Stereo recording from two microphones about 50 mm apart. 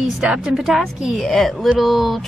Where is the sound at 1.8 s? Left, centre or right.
Centre.